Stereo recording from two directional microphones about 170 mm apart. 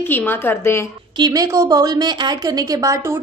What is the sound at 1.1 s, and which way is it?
A woman's voice, 20° right (ahead or behind).